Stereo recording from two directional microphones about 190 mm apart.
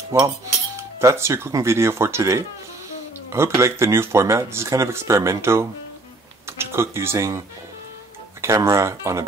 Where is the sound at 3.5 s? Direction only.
15° right (ahead or behind).